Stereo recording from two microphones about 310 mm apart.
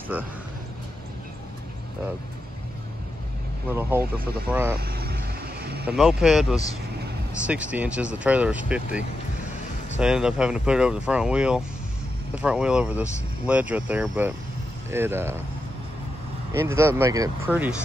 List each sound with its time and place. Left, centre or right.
0.1 s speech: centre
4.0 s speech: right
4.5 s speech: centre
4.7 s vehicle: right
5.9 s speech: centre
16.5 s speech: centre